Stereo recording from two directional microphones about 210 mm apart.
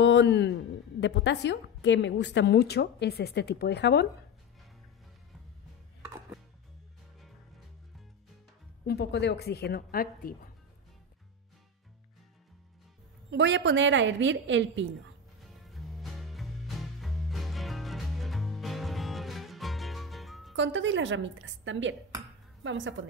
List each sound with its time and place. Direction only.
0.0 s a sound: 55° left (ahead or behind)
1.0 s a woman's voice: 55° left (ahead or behind)
8.8 s a woman's voice: 50° left (ahead or behind)
13.3 s a woman's voice: 55° right (ahead or behind)
15.4 s music: centre (ahead or behind)
20.5 s a woman's voice: 60° right (ahead or behind)